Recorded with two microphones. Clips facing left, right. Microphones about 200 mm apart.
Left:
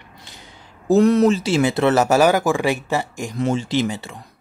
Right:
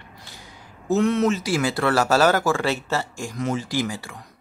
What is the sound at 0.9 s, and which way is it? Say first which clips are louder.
Speech: left 6 dB; 35° left (ahead or behind).